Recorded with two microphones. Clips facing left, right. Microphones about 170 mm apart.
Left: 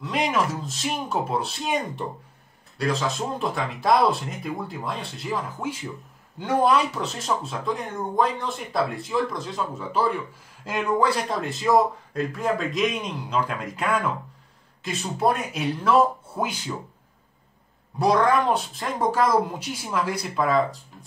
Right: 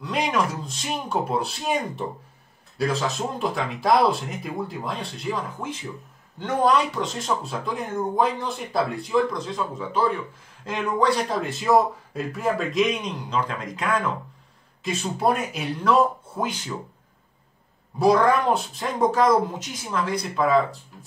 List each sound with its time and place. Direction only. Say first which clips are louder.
0.0 s speech: even; centre (ahead or behind)
17.9 s speech: right 2 dB; centre (ahead or behind)